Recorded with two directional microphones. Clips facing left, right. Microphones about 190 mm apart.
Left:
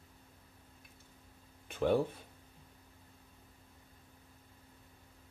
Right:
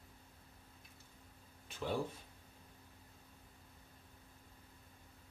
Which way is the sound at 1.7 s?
60° left (ahead or behind).